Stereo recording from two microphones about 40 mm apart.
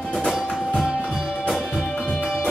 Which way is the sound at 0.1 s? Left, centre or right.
Centre.